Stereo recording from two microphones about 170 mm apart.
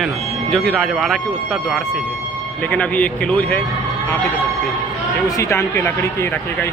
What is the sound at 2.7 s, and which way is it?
Speech, 10° left (ahead or behind).